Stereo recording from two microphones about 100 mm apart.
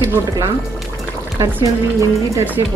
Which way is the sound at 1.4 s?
30° right (ahead or behind).